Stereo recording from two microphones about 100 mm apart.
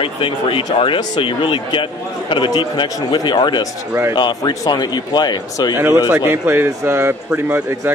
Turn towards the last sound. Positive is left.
turn(degrees=-25)  # may be behind; listen again after turning